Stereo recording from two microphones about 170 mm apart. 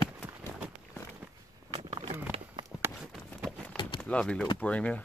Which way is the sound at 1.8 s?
40° right (ahead or behind).